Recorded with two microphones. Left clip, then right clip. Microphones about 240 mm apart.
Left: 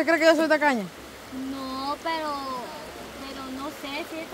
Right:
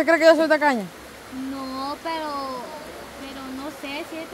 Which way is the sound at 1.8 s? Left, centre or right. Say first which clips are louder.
Even; centre.